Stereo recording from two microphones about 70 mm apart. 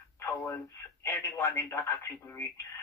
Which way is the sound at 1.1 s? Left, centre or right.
Left.